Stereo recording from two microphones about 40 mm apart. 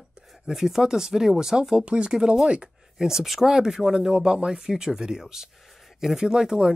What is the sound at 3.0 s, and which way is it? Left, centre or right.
Speech, centre.